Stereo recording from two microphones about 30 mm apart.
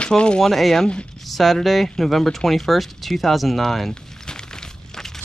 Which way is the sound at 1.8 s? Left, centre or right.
Centre.